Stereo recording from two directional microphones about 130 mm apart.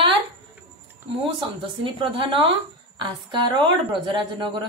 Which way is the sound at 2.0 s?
40° right (ahead or behind).